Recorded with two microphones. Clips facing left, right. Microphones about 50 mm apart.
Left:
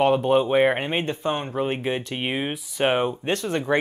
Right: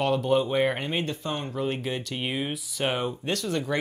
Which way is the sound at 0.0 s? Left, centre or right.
Left.